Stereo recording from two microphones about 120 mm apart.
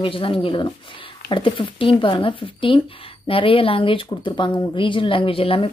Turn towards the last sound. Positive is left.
turn(degrees=50)  # may be behind; listen again after turning